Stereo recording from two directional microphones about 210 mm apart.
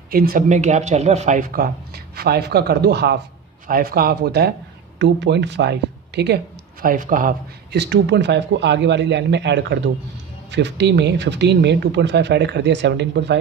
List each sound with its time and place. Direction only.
0.1 s speech: 45° right (ahead or behind)